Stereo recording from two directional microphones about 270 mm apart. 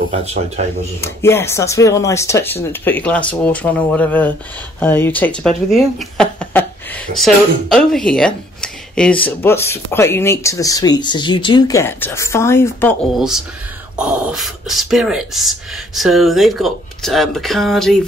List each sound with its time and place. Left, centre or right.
0.1 s speech: right
1.0 s speech: centre
13.9 s speech: centre